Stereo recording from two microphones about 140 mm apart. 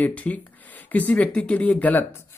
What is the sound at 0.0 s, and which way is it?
Speech, 10° left (ahead or behind).